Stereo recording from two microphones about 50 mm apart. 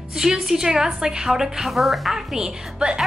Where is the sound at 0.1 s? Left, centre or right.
Centre.